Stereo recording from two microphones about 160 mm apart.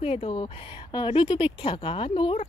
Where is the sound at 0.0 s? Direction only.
40° left (ahead or behind).